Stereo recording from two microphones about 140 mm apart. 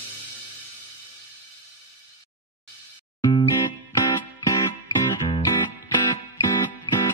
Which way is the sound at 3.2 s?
30° left (ahead or behind).